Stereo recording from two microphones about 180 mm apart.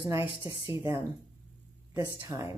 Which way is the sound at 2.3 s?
15° right (ahead or behind).